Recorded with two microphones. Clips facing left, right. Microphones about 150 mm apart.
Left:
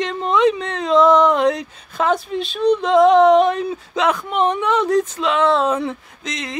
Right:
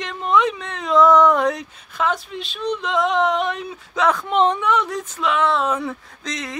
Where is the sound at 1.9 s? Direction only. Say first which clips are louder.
Left 5 dB; 40° left (ahead or behind).